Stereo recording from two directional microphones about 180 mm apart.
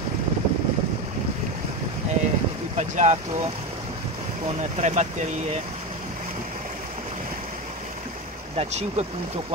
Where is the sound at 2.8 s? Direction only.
40° right (ahead or behind).